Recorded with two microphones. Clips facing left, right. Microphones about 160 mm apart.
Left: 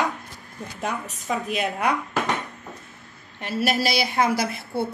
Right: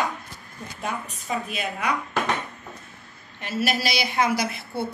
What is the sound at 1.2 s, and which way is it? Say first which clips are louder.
Speech: left 4 dB; 60° left (ahead or behind).